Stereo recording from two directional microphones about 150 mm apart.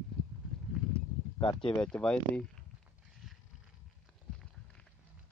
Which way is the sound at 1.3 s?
30° left (ahead or behind).